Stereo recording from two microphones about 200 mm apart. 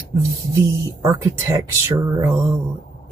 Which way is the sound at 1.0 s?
15° right (ahead or behind).